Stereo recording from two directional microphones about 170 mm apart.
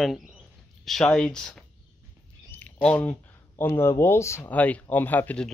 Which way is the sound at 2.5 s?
10° left (ahead or behind).